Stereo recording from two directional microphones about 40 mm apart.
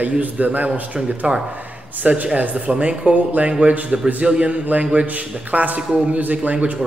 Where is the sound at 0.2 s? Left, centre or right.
Right.